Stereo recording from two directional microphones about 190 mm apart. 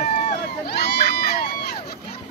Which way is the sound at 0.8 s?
60° left (ahead or behind).